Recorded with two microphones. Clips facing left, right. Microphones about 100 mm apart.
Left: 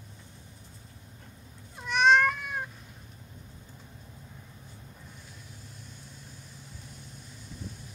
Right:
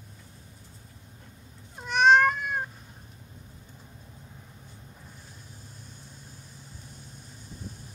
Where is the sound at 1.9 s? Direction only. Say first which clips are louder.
Right 3 dB; 50° right (ahead or behind).